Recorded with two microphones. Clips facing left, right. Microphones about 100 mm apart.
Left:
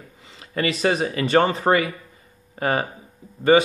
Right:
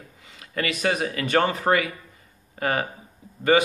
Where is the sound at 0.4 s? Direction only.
30° left (ahead or behind).